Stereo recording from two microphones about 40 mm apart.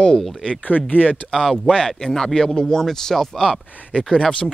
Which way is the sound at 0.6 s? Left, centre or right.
Left.